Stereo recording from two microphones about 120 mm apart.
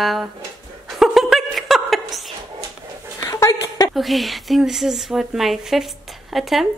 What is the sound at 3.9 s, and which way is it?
A woman's voice, centre (ahead or behind).